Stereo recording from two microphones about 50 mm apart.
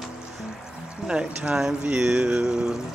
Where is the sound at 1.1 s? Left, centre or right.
Centre.